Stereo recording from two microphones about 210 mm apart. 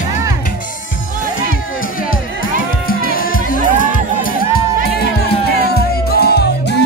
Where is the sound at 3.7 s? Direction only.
40° left (ahead or behind).